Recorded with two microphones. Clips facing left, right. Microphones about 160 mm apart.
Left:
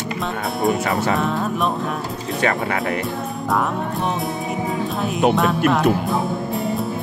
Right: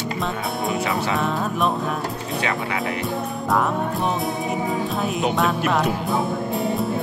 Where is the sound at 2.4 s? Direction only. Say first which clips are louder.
Left 5 dB; 50° left (ahead or behind).